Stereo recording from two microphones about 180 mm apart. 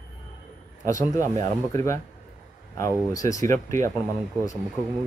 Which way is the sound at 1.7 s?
15° left (ahead or behind).